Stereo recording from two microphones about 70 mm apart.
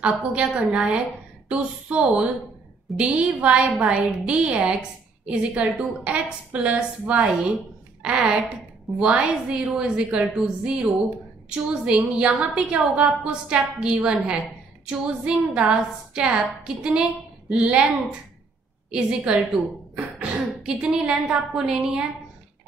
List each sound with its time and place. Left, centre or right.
0.0 s a woman's voice: centre
12.2 s a woman's voice: centre
18.9 s a woman's voice: centre